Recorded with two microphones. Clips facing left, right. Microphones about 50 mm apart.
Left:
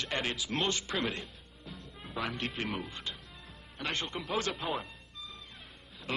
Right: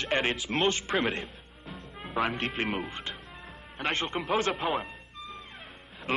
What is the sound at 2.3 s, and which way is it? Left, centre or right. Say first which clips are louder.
Speech: right 5 dB; right.